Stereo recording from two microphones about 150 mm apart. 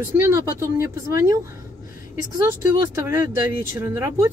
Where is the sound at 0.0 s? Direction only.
20° right (ahead or behind).